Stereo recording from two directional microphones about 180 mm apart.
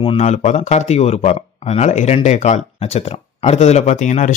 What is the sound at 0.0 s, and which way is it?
Speech, 35° left (ahead or behind).